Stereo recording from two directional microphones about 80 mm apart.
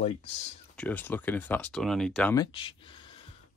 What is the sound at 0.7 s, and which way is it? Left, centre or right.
Speech, centre.